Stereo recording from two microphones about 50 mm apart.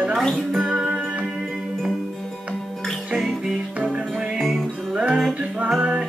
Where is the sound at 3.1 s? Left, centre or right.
Centre.